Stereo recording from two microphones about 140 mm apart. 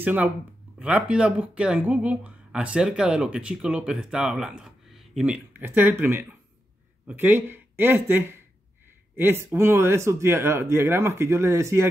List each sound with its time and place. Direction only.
0.0 s speech: 10° right (ahead or behind)